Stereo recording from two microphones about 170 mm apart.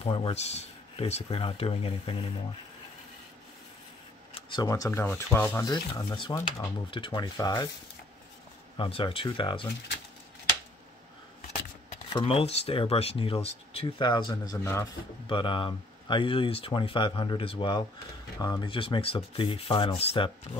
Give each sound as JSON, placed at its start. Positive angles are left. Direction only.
{"t": 0.0, "sound": "speech", "side_deg": 35}
{"t": 4.3, "sound": "speech", "side_deg": 25}
{"t": 8.7, "sound": "speech", "side_deg": 30}
{"t": 12.1, "sound": "speech", "side_deg": 30}
{"t": 15.2, "sound": "speech", "side_deg": 30}